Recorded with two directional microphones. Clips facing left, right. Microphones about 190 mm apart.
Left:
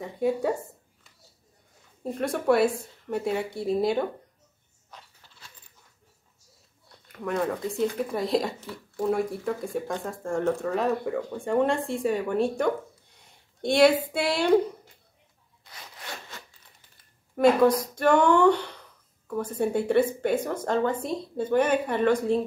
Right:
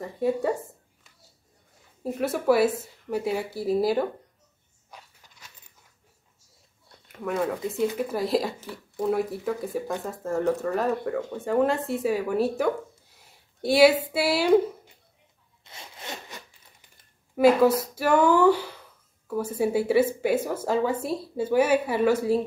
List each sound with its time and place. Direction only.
0.0 s a woman's voice: centre (ahead or behind)
2.0 s a woman's voice: 5° right (ahead or behind)
4.9 s a sound: 10° right (ahead or behind)
7.2 s a woman's voice: 5° right (ahead or behind)
15.6 s zipper: 25° right (ahead or behind)
17.4 s speech: 5° right (ahead or behind)